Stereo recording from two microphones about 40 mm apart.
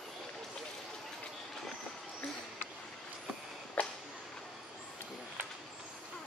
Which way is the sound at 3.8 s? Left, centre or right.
Left.